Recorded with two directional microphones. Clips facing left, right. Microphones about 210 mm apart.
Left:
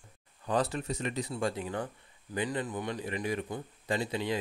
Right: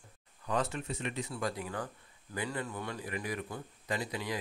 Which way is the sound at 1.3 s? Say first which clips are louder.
Left 4 dB; 25° left (ahead or behind).